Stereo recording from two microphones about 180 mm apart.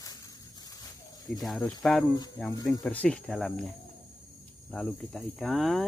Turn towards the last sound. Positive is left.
turn(degrees=0)  # may be behind; listen again after turning